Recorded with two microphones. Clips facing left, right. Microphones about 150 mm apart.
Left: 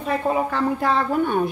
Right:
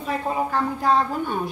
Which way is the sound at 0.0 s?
65° left (ahead or behind).